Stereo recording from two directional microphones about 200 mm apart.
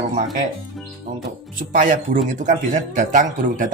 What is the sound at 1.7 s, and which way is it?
Speech, 40° right (ahead or behind).